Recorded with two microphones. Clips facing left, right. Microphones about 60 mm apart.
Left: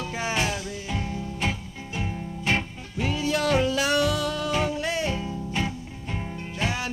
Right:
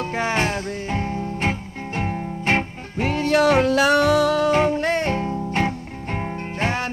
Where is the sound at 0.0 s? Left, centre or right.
Right.